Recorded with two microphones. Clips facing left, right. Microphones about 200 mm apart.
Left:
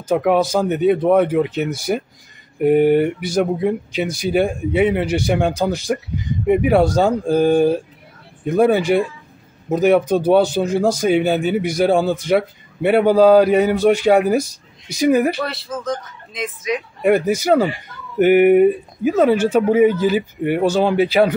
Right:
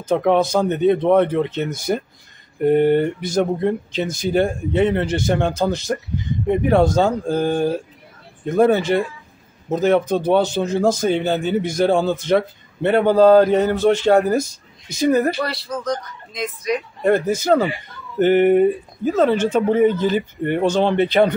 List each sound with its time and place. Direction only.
0.1 s a man's voice: 10° left (ahead or behind)